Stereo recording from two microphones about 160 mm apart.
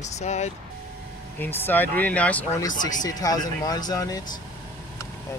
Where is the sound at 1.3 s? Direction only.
10° left (ahead or behind).